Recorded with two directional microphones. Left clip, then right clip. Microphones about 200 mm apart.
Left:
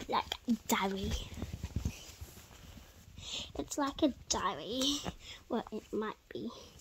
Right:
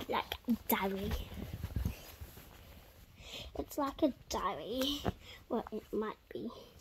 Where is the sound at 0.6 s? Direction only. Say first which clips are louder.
Left 2 dB; 25° left (ahead or behind).